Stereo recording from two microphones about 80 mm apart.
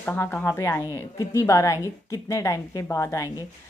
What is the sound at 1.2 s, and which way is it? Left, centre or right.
Speech, left.